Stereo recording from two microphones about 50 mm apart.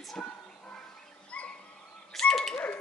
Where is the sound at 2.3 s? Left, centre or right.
Centre.